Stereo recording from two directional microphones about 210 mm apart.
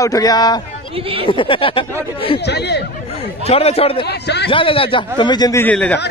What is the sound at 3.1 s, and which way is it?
Speech, 30° left (ahead or behind).